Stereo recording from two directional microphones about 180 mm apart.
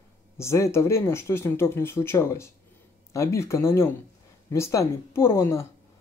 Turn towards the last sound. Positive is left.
turn(degrees=15)  # may be behind; listen again after turning